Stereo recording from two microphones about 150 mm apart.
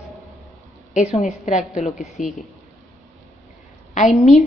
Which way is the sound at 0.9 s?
50° left (ahead or behind).